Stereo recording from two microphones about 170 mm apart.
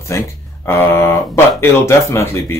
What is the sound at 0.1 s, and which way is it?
Speech, 15° left (ahead or behind).